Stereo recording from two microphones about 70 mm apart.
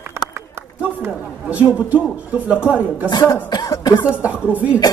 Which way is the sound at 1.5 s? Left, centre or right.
Right.